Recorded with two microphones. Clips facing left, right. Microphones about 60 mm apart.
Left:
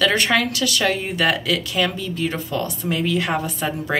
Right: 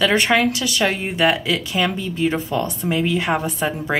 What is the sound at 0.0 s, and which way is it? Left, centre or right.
A woman's voice, centre.